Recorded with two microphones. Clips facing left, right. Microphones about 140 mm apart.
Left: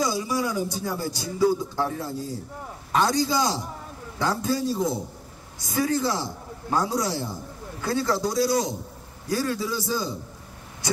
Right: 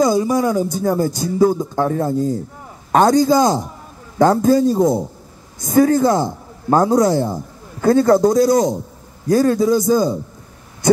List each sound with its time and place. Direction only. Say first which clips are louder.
0.0 s speech: right 10 dB; 45° right (ahead or behind)